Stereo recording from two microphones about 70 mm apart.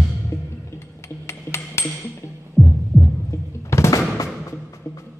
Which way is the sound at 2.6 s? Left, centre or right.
Centre.